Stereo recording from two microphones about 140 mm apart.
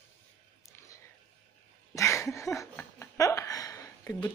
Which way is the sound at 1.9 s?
20° left (ahead or behind).